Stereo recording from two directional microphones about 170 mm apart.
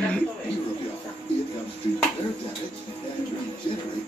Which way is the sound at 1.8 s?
30° left (ahead or behind).